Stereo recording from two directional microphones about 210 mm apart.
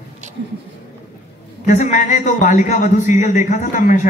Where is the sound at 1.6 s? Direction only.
35° left (ahead or behind).